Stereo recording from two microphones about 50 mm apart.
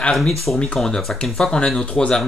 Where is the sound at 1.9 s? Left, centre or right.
Left.